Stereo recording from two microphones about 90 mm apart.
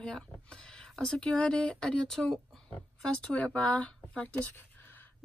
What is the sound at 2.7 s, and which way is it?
Speech, 15° left (ahead or behind).